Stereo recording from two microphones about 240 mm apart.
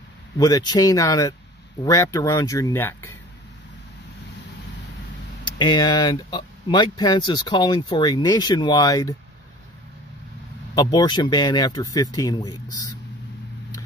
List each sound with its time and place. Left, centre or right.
0.4 s speech: centre
5.4 s speech: centre
10.7 s speech: centre